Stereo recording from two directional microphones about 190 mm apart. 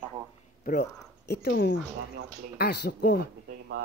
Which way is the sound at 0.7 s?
60° left (ahead or behind).